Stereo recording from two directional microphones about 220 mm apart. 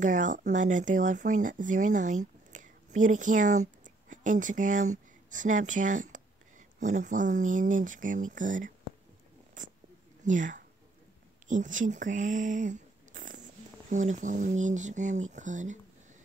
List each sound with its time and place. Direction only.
0.0 s speech: 35° right (ahead or behind)
10.2 s speech: 35° right (ahead or behind)